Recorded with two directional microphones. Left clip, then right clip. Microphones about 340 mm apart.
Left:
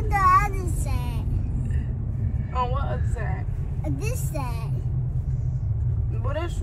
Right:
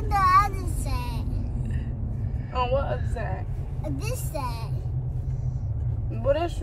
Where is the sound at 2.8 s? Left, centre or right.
Right.